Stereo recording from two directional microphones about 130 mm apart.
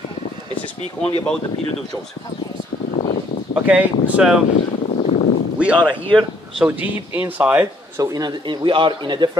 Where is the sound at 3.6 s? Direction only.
10° right (ahead or behind).